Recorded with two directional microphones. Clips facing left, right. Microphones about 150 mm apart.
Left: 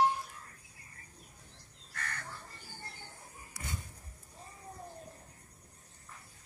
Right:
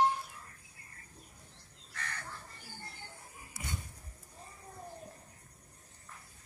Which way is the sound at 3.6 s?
25° right (ahead or behind).